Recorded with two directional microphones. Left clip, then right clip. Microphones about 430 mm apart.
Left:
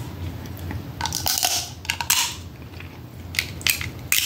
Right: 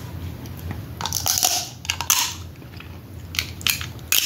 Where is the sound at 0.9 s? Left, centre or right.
Centre.